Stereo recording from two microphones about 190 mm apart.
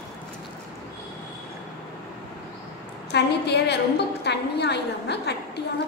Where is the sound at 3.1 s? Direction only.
60° left (ahead or behind).